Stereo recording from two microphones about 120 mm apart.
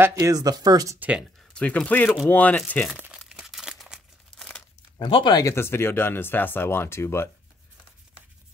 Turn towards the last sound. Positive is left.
turn(degrees=20)  # may be behind; listen again after turning